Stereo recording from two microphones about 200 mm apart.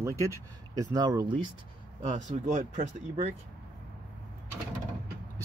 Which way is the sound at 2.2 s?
40° right (ahead or behind).